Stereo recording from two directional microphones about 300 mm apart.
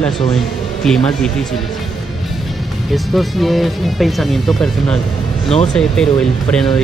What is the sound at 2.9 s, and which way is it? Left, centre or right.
Speech, centre.